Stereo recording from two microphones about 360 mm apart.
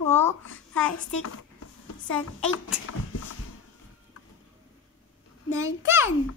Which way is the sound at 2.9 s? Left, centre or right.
Left.